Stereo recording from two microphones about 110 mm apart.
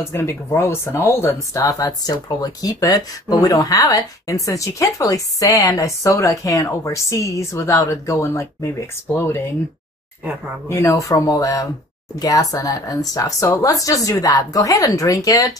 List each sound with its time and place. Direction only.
0.0 s speech: 25° left (ahead or behind)
10.7 s speech: 30° left (ahead or behind)